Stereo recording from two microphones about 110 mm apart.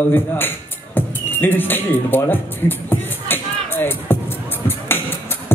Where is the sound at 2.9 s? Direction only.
20° left (ahead or behind).